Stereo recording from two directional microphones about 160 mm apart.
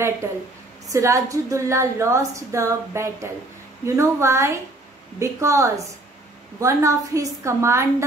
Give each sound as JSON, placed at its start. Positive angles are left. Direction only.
{"t": 0.8, "sound": "a woman's voice", "side_deg": -20}